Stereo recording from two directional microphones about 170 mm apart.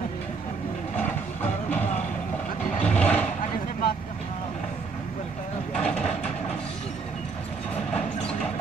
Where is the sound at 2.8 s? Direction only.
5° left (ahead or behind).